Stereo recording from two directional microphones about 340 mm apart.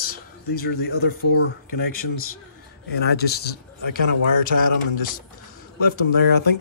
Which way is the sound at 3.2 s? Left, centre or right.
Left.